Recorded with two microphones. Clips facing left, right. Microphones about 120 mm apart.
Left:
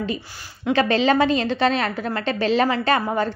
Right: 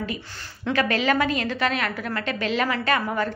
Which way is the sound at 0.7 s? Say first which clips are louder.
Left 4 dB; 25° left (ahead or behind).